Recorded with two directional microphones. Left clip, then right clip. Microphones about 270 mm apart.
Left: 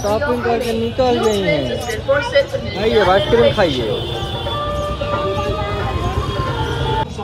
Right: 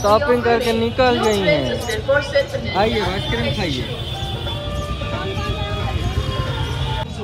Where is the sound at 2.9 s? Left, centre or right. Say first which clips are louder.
Left 9 dB; centre.